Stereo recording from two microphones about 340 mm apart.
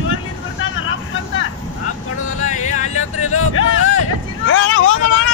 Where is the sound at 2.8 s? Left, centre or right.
Left.